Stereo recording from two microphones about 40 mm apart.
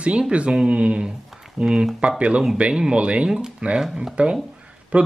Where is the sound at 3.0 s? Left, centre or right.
Right.